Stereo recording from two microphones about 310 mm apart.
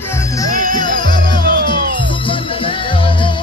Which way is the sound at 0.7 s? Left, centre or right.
Centre.